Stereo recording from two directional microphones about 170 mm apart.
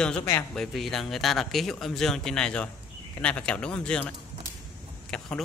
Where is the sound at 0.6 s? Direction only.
Centre (ahead or behind).